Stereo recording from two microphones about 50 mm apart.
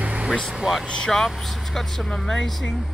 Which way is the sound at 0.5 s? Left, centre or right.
Centre.